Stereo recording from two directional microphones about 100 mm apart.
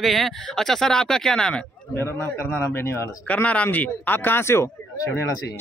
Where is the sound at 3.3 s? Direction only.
15° left (ahead or behind).